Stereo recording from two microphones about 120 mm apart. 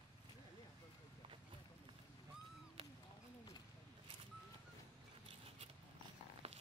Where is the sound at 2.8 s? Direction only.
50° right (ahead or behind).